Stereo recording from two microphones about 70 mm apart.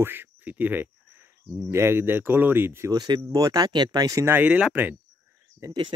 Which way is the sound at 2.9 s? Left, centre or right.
Right.